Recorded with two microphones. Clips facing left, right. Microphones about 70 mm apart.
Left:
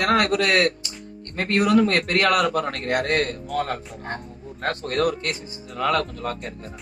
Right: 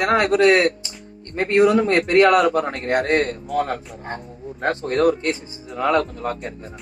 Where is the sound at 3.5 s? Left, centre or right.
Centre.